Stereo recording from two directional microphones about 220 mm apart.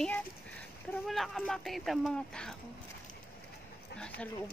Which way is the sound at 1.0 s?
Centre (ahead or behind).